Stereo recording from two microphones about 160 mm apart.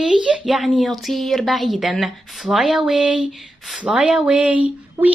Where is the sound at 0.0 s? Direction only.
5° right (ahead or behind).